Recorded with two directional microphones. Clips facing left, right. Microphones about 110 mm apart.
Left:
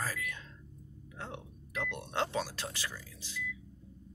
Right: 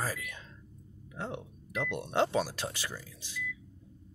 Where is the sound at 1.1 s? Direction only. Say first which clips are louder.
Right 5 dB; 20° right (ahead or behind).